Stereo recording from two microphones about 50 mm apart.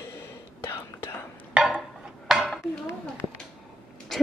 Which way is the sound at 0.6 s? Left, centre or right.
Left.